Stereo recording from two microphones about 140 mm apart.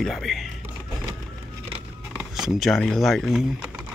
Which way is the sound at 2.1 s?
5° right (ahead or behind).